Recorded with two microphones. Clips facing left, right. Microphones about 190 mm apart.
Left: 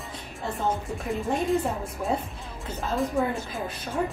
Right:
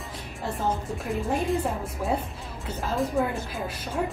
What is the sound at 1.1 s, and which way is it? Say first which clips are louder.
Speech: even; centre (ahead or behind).